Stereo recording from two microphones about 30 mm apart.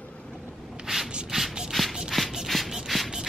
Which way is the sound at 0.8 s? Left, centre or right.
Centre.